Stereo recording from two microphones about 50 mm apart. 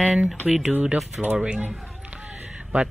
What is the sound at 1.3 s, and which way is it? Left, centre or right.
Speech, centre.